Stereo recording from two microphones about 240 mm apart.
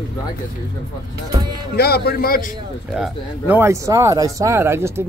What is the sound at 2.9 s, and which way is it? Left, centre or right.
Speech, centre.